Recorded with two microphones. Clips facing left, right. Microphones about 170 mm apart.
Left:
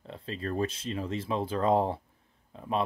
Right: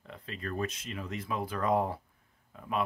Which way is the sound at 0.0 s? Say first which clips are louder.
Left 5 dB; 30° left (ahead or behind).